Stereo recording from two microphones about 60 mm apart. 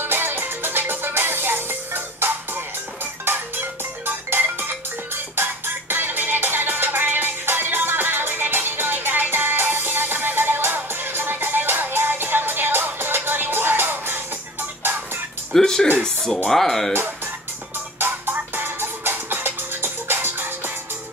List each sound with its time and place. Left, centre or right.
0.0 s music: right
15.5 s speech: centre
17.9 s music: right